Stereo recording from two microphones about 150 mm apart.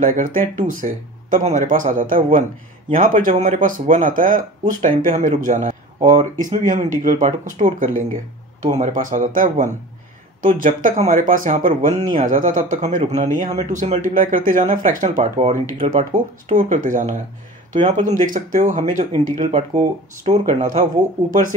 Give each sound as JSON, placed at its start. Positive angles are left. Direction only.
{"t": 0.0, "sound": "speech", "side_deg": -65}
{"t": 8.6, "sound": "speech", "side_deg": -55}